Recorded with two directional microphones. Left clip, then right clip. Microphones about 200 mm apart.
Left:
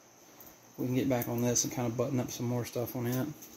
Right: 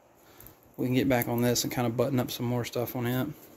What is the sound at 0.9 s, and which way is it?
Speech, 20° right (ahead or behind).